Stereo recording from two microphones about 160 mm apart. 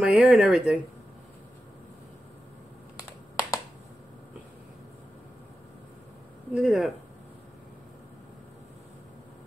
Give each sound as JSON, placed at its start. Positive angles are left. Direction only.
{"t": 0.0, "sound": "speech", "side_deg": -5}
{"t": 3.3, "sound": "a sound", "side_deg": 20}
{"t": 6.5, "sound": "speech", "side_deg": -5}